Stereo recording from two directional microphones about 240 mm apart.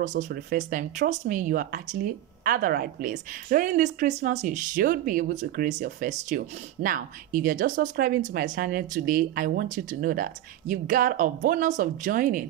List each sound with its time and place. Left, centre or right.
0.0 s speech: right